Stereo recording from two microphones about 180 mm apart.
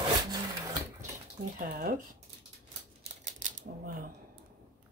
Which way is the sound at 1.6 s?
50° right (ahead or behind).